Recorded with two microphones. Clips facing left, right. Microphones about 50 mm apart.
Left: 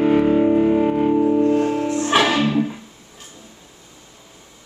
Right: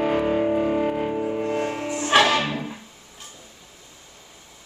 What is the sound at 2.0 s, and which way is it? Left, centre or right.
Music, centre.